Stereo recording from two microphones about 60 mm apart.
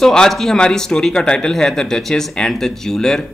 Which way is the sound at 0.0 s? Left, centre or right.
Centre.